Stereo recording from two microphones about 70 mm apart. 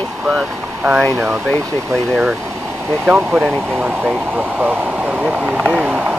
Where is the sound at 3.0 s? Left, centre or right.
Right.